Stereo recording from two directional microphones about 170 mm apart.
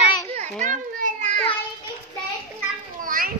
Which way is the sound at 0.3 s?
45° right (ahead or behind).